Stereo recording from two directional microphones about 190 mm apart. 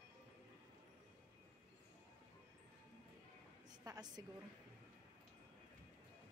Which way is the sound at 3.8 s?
20° right (ahead or behind).